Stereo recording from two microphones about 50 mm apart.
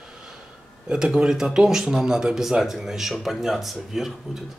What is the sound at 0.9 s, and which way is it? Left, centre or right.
Speech, centre.